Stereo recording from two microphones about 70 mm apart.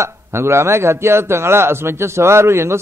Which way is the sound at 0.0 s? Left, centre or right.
Right.